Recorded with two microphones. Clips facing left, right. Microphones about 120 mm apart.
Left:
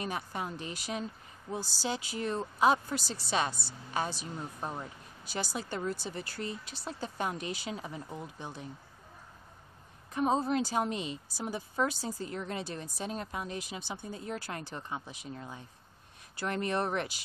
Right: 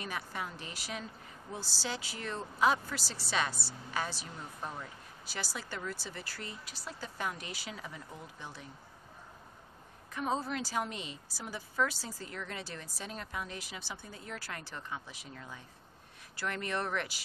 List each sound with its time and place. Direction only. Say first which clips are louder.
0.0 s speech: left 3 dB; 25° left (ahead or behind)
10.1 s speech: left 6 dB; 20° left (ahead or behind)